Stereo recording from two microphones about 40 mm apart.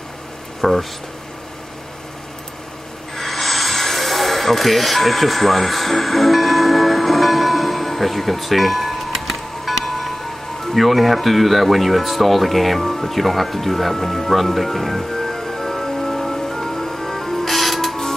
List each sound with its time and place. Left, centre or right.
0.6 s speech: centre
3.2 s music: centre